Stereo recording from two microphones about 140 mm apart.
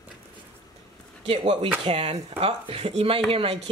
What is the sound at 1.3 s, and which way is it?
Speech, 40° right (ahead or behind).